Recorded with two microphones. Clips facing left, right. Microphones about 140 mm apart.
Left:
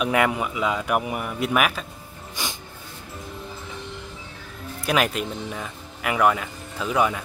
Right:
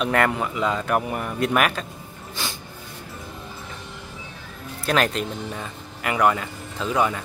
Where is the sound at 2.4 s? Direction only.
15° left (ahead or behind).